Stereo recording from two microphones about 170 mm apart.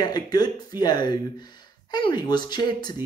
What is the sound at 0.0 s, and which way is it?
Speech, 25° left (ahead or behind).